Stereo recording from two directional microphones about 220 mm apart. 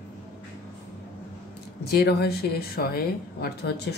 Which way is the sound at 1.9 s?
45° left (ahead or behind).